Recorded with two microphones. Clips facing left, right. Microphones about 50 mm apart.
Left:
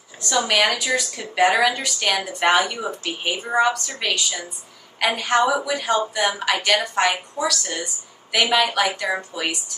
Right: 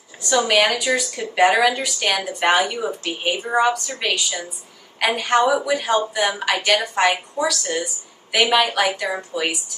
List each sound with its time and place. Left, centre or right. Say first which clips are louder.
0.5 s a woman's voice: right 1 dB; centre